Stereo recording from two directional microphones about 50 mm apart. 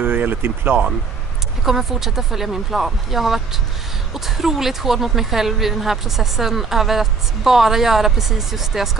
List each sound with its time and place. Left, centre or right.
0.0 s speech: right
1.6 s a woman's voice: centre